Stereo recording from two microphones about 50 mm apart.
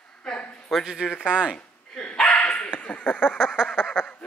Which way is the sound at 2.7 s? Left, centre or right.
Left.